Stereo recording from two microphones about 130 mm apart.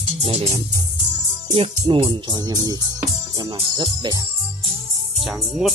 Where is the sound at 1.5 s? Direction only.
45° right (ahead or behind).